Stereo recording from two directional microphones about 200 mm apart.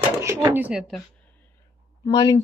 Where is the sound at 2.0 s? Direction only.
20° left (ahead or behind).